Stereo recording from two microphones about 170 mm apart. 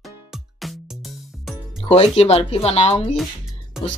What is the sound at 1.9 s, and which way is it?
Speech, 35° left (ahead or behind).